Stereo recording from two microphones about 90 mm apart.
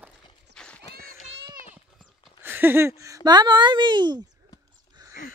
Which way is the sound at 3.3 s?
55° right (ahead or behind).